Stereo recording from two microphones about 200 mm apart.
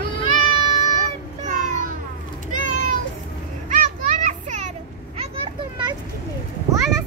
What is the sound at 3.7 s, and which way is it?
Children playing, 40° right (ahead or behind).